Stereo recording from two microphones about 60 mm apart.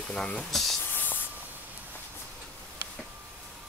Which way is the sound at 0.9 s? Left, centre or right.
Left.